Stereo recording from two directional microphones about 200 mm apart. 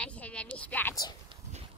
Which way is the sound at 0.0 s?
5° left (ahead or behind).